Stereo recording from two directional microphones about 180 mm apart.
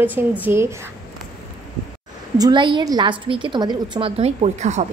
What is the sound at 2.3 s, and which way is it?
A woman's voice, 25° right (ahead or behind).